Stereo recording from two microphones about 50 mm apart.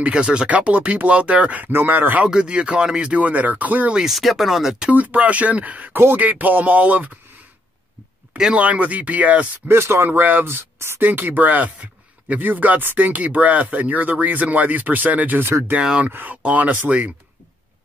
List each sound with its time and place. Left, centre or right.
0.0 s speech: right
1.7 s speech: right
2.2 s speech: centre
3.2 s speech: right
4.1 s speech: centre
4.9 s speech: right
8.5 s speech: right
9.7 s speech: right
11.0 s speech: right